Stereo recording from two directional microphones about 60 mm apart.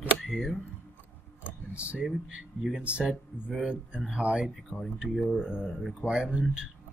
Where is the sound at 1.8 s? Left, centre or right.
Centre.